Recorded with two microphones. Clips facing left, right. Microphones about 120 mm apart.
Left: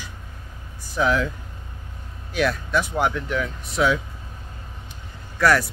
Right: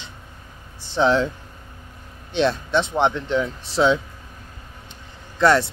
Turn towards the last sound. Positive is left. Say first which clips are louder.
# right 2 dB
turn(degrees=-25)  # may be behind; listen again after turning